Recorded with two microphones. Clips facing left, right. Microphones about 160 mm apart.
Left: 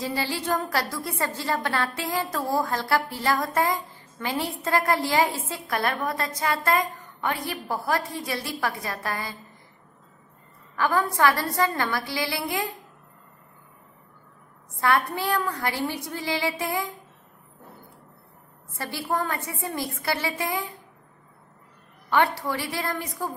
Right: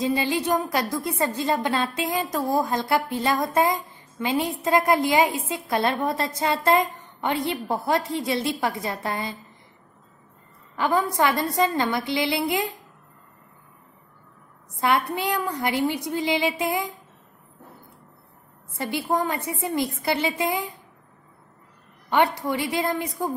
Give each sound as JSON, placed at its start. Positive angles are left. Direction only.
{"t": 0.0, "sound": "a woman's voice", "side_deg": -20}
{"t": 10.8, "sound": "a woman's voice", "side_deg": -20}
{"t": 14.8, "sound": "a woman's voice", "side_deg": -20}
{"t": 18.8, "sound": "a woman's voice", "side_deg": -20}
{"t": 22.1, "sound": "a woman's voice", "side_deg": -20}